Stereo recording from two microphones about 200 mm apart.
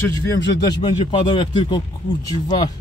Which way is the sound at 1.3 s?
25° left (ahead or behind).